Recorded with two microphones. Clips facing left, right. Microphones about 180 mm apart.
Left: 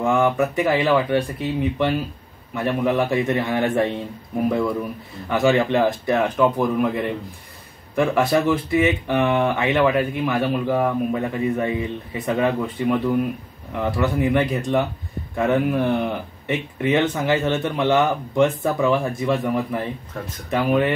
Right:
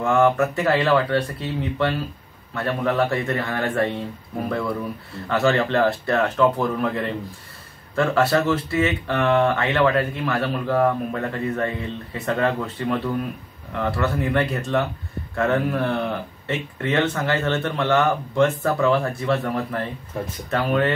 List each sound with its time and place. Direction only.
0.0 s speech: 15° left (ahead or behind)
5.3 s speech: 15° left (ahead or behind)